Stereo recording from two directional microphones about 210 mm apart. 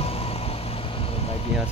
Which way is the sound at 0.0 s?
30° left (ahead or behind).